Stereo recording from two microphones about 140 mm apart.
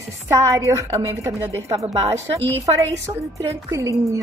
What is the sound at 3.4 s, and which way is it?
Speech, 20° right (ahead or behind).